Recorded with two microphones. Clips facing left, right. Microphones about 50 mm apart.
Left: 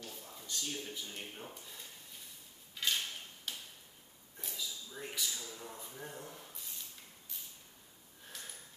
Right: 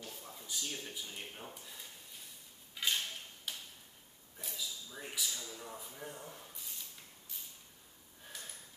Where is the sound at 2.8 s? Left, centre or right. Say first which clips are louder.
Even; centre.